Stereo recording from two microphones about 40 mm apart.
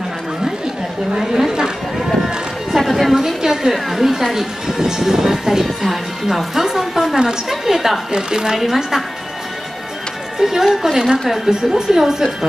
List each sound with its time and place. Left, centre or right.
1.1 s run: centre
2.9 s a sound: centre
3.2 s a sound: centre
3.7 s speech: centre
8.1 s speech: centre
8.5 s speech: centre
10.4 s speech: centre